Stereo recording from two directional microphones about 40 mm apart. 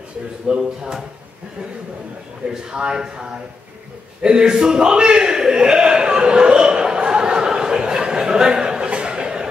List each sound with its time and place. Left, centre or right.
0.5 s a man's voice: right
2.5 s a man's voice: centre
4.2 s a sound: centre